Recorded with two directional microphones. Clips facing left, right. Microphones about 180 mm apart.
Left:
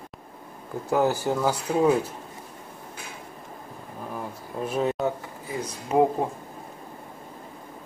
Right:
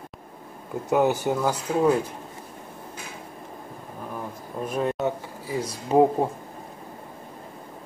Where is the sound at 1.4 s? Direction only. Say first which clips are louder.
Even; 10° left (ahead or behind).